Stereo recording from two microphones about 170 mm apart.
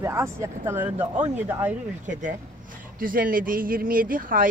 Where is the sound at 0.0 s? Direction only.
15° right (ahead or behind).